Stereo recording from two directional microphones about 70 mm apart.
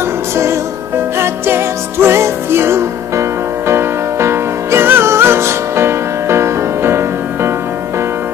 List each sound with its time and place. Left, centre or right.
1.1 s music: right